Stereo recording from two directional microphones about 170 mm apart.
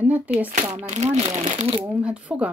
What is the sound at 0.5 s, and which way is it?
Speech, 45° right (ahead or behind).